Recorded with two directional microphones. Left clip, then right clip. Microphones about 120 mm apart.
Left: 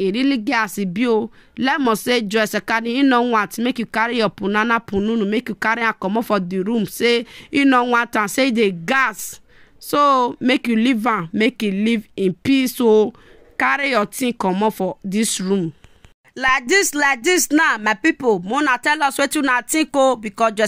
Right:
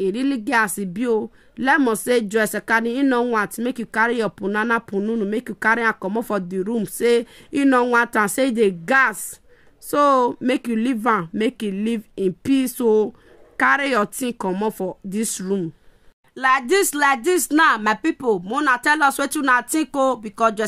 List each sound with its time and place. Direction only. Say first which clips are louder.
0.0 s speech: left 3 dB; 20° left (ahead or behind)
4.9 s speech: left 3 dB; 15° left (ahead or behind)
5.3 s speech: even; 25° left (ahead or behind)